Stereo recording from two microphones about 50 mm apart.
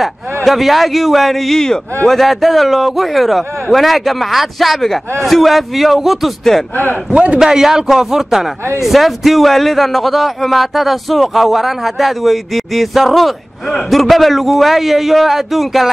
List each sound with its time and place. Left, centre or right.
0.0 s a man's voice: centre
6.7 s speech: left
7.1 s a man's voice: centre